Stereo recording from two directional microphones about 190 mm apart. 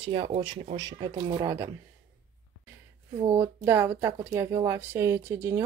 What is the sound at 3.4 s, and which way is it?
Speech, 10° right (ahead or behind).